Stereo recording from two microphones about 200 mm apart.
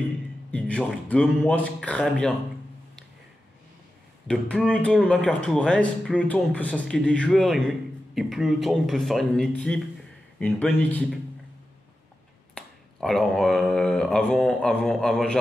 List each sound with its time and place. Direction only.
0.5 s speech: 5° left (ahead or behind)
4.3 s speech: 5° left (ahead or behind)
12.5 s speech: centre (ahead or behind)